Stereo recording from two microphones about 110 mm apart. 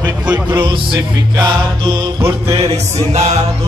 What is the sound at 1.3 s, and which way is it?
Music, 40° right (ahead or behind).